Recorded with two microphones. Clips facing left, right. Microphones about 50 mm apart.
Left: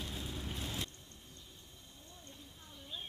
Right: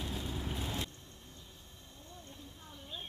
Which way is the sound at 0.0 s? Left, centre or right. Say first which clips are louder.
Right 4 dB; centre.